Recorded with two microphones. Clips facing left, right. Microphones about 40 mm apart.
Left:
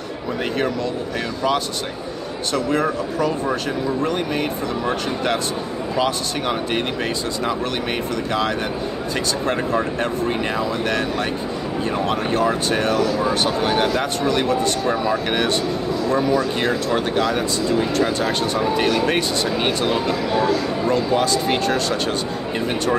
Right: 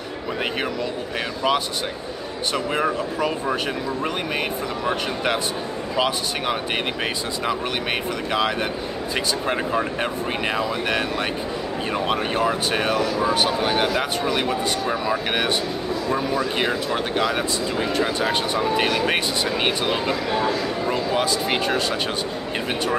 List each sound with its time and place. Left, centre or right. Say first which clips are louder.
2.5 s speech: left 3 dB; centre